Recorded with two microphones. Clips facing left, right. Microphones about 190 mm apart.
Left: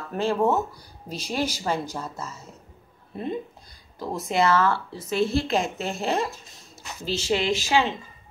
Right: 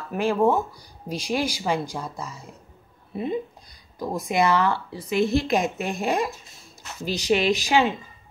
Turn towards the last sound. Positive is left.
turn(degrees=-15)  # may be behind; listen again after turning